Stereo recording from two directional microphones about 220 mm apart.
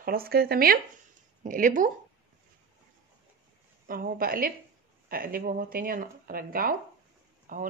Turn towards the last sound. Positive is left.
turn(degrees=-35)  # may be behind; listen again after turning